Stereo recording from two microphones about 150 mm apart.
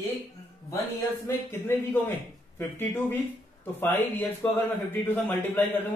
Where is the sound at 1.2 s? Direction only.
15° left (ahead or behind).